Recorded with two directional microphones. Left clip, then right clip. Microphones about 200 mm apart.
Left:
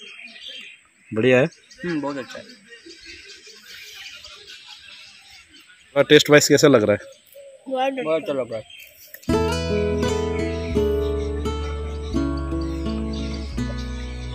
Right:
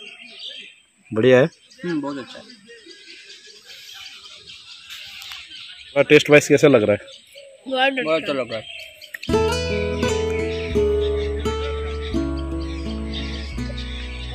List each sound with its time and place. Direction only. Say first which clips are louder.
1.1 s a man's voice: right 3 dB; 10° right (ahead or behind)
2.0 s a man's voice: left 1 dB; 15° left (ahead or behind)
5.9 s speech: right 1 dB; centre (ahead or behind)
7.7 s a man's voice: right 3 dB; 15° right (ahead or behind)
8.1 s speech: right 1 dB; 5° left (ahead or behind)
9.2 s music: right 2 dB; centre (ahead or behind)